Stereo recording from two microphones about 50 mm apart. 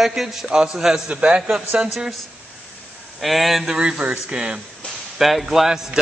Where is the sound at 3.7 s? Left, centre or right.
Centre.